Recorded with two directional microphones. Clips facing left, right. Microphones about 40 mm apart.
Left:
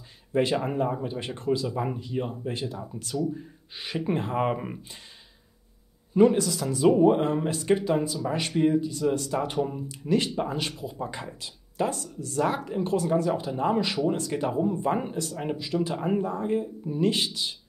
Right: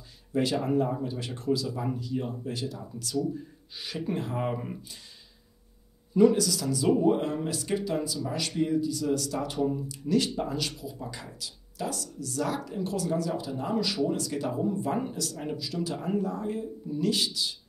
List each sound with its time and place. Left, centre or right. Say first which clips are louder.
0.3 s speech: left 2 dB; left
6.1 s speech: left 1 dB; left